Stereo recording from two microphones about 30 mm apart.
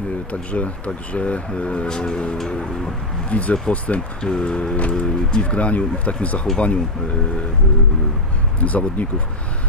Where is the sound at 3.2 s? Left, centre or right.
Left.